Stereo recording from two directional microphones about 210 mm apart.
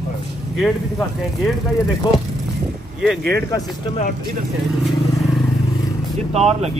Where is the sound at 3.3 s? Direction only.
15° left (ahead or behind).